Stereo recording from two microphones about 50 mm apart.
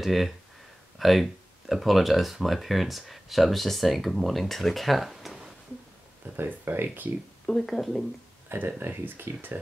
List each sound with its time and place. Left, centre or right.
0.0 s speech: centre
6.3 s speech: right
7.4 s speech: centre
8.5 s speech: right